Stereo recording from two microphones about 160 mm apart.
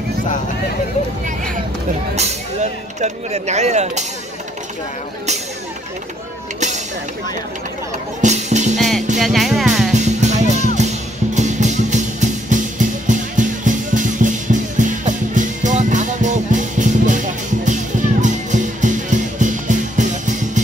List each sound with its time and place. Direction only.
2.1 s speech: 45° right (ahead or behind)
8.2 s music: 45° right (ahead or behind)
8.7 s speech: centre (ahead or behind)
9.2 s music: centre (ahead or behind)
9.9 s music: 45° right (ahead or behind)
18.2 s music: 50° right (ahead or behind)